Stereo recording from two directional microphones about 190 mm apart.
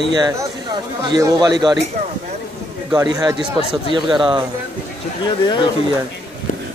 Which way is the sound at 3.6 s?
30° left (ahead or behind).